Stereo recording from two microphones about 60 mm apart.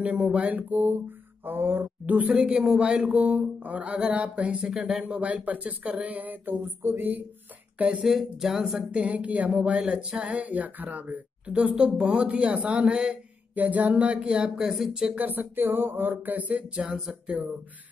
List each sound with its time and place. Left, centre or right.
0.2 s speech: centre; by 2.1 s right
2.1 s speech: right
8.0 s speech: centre
8.9 s speech: right
15.1 s speech: right